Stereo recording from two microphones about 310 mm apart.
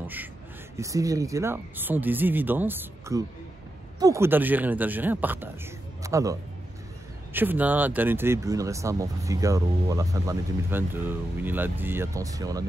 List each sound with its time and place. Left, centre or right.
0.0 s a man's voice: centre
7.3 s speech: centre